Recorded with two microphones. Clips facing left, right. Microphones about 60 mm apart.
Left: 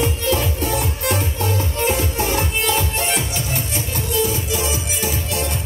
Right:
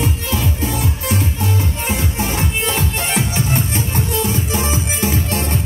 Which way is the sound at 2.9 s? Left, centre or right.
Right.